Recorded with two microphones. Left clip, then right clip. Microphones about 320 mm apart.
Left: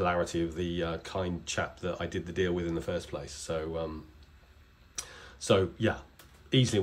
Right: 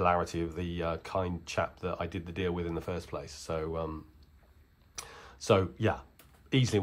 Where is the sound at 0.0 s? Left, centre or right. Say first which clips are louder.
Right 1 dB; centre.